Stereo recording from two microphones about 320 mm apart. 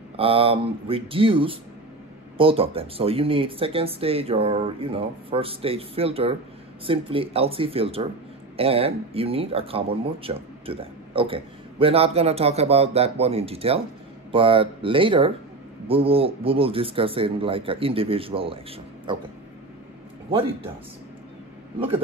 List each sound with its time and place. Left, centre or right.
0.2 s speech: centre
21.7 s speech: centre